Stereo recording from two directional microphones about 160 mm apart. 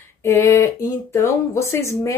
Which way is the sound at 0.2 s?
15° left (ahead or behind).